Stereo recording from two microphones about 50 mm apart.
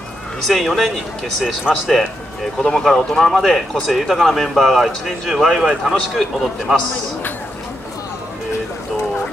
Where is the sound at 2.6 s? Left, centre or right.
Centre.